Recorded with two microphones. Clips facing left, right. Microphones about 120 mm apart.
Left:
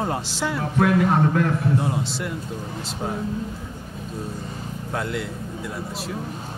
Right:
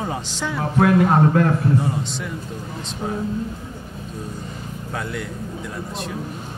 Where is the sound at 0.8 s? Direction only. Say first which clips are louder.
Right 3 dB; 40° right (ahead or behind).